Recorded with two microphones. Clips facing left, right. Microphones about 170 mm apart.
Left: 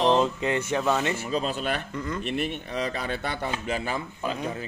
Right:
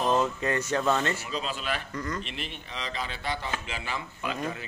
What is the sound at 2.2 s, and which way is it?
Speech, 55° left (ahead or behind).